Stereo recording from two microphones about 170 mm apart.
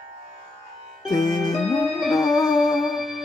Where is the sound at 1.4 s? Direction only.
Centre (ahead or behind).